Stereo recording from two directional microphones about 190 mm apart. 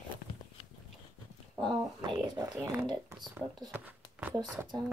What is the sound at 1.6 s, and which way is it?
Speech, 25° right (ahead or behind).